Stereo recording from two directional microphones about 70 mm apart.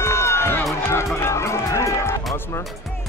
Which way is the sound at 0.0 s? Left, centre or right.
Left.